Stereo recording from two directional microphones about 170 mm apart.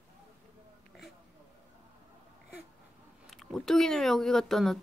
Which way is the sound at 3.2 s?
Centre (ahead or behind).